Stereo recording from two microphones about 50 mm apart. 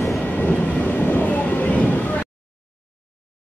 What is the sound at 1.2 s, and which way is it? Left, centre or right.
Vehicle, left.